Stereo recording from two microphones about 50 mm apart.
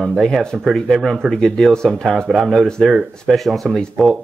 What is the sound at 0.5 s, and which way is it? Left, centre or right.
Speech, centre.